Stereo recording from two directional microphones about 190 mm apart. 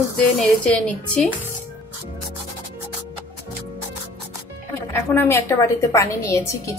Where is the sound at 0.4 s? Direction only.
5° left (ahead or behind).